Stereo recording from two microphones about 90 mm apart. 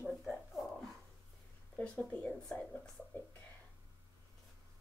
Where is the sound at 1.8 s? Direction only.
15° left (ahead or behind).